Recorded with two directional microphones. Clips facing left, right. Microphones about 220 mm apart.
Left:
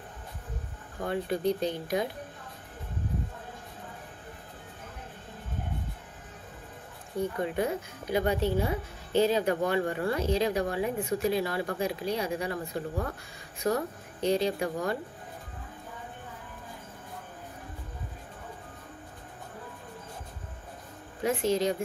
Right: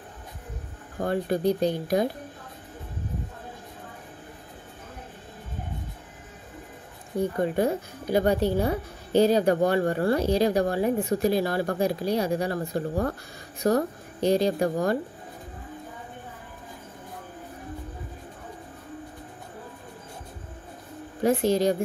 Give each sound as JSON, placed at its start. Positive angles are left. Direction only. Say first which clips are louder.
{"t": 0.9, "sound": "a woman's voice", "louder": "right 5 dB", "side_deg": -40}
{"t": 1.4, "sound": "speech", "louder": "right 5 dB", "side_deg": -10}
{"t": 7.4, "sound": "a woman's voice", "louder": "right 5 dB", "side_deg": -35}
{"t": 21.2, "sound": "a woman's voice", "louder": "right 5 dB", "side_deg": -40}